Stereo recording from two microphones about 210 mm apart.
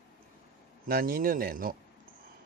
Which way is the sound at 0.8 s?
45° right (ahead or behind).